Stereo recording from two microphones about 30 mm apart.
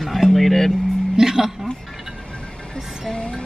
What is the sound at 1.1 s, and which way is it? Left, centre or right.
Speech, centre.